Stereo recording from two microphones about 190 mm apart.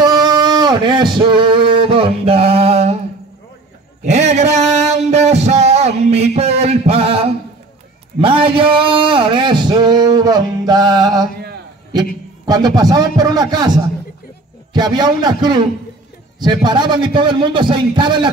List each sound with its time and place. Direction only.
0.0 s music: 20° right (ahead or behind)
4.3 s music: 35° right (ahead or behind)
6.0 s a sound: 35° right (ahead or behind)
8.2 s speech: 30° right (ahead or behind)
12.4 s a man's voice: 20° right (ahead or behind)
14.7 s a man's voice: 20° right (ahead or behind)